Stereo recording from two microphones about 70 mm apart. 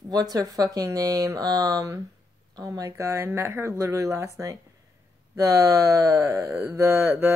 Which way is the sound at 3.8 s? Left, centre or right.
Right.